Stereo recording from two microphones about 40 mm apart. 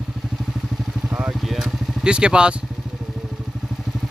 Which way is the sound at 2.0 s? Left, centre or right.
Right.